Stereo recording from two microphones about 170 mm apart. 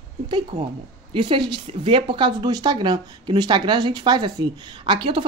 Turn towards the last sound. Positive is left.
turn(degrees=-30)  # may be behind; listen again after turning